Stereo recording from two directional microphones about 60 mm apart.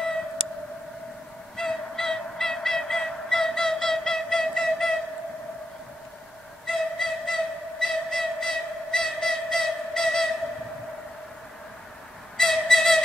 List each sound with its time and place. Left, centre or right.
1.6 s honk: centre
6.6 s a sound: centre
12.4 s flute: centre